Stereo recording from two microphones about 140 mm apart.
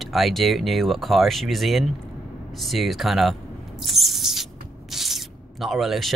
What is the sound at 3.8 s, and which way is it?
Owl, centre (ahead or behind).